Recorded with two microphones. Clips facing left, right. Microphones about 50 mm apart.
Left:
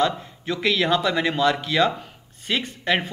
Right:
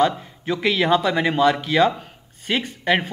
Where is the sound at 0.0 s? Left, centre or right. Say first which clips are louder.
Right 3 dB; centre.